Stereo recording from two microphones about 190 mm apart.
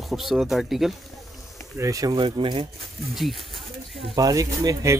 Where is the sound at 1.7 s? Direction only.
15° right (ahead or behind).